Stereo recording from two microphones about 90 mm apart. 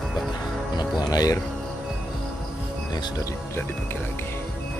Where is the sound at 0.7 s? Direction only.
50° left (ahead or behind).